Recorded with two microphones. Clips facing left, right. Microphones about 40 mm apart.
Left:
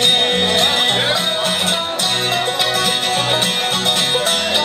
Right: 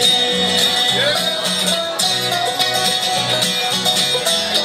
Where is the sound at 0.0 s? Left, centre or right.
Left.